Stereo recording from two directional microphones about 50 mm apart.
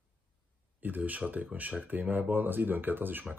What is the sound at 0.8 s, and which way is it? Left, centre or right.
Speech, right.